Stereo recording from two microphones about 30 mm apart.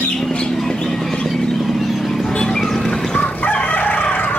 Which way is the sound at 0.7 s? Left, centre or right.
Centre.